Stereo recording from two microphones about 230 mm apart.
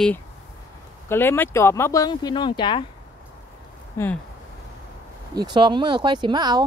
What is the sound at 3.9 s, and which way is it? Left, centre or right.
Speech, centre.